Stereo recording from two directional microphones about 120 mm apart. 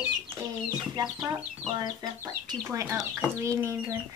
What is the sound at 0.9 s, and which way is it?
Speech, 30° right (ahead or behind).